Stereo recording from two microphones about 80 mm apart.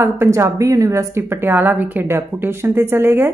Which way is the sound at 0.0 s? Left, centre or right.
Right.